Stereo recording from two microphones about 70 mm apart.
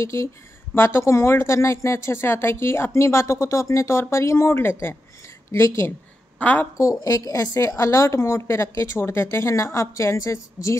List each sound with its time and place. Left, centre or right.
0.0 s a woman's voice: left
6.4 s a woman's voice: left
6.8 s a woman's voice: left